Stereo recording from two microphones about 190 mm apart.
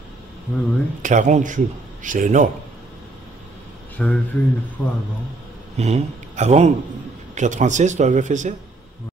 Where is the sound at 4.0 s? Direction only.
5° left (ahead or behind).